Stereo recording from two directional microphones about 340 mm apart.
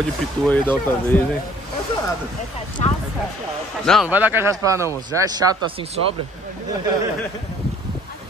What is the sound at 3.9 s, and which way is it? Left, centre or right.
A man's voice, centre.